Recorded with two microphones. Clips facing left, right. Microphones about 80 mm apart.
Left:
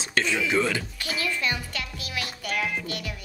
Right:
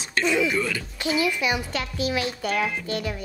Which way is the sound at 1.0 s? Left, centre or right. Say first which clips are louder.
Right 8 dB; centre.